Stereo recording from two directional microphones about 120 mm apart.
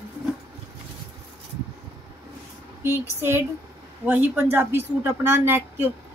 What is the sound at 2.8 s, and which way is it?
A woman's voice, 20° right (ahead or behind).